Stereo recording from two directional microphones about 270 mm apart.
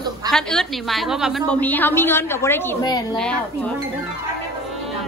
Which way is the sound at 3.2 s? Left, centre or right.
Centre.